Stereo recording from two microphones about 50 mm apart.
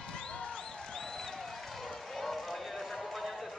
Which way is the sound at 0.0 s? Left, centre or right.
Centre.